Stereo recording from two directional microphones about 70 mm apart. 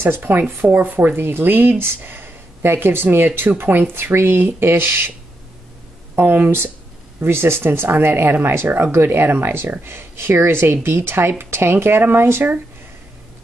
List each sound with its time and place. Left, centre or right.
0.0 s speech: right
6.1 s speech: right